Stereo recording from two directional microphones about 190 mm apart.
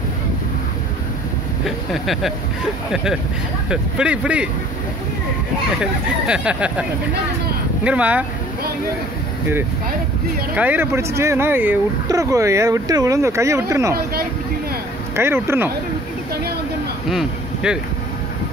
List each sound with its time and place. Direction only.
1.9 s speech: centre (ahead or behind)
5.8 s speech: 5° right (ahead or behind)
10.5 s speech: 10° right (ahead or behind)
15.1 s speech: 15° right (ahead or behind)
17.1 s speech: 5° right (ahead or behind)